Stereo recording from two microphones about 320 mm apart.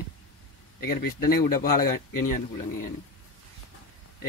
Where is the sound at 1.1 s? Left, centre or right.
Left.